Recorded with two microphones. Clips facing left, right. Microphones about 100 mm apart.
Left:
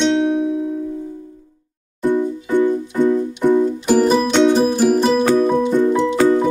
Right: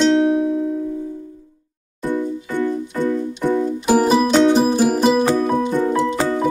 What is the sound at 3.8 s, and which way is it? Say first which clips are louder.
Music: right 3 dB; 5° right (ahead or behind).